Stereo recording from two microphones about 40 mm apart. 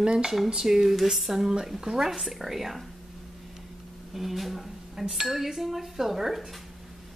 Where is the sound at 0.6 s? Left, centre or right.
Centre.